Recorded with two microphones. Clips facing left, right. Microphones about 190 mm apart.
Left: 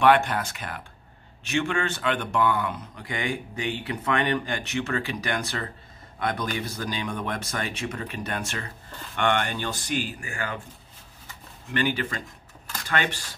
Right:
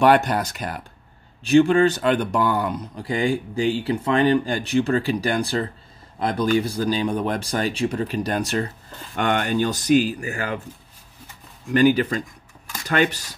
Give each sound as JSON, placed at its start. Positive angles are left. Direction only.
{"t": 0.0, "sound": "speech", "side_deg": -40}
{"t": 11.7, "sound": "speech", "side_deg": -40}